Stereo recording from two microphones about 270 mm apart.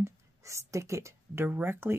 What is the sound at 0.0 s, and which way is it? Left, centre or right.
Speech, centre.